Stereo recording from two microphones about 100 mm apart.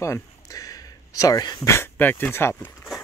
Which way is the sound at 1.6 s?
25° left (ahead or behind).